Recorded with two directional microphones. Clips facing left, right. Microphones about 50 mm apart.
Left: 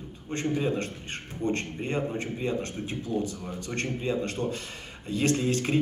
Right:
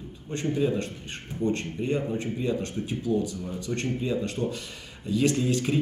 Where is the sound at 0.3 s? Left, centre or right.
Left.